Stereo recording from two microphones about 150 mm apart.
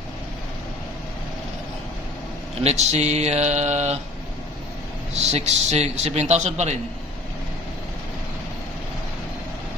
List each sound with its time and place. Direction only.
2.6 s a man's voice: 45° right (ahead or behind)
5.1 s a man's voice: 45° right (ahead or behind)